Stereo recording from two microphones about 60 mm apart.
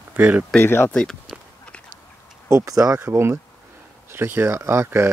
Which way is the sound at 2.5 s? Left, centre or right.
Right.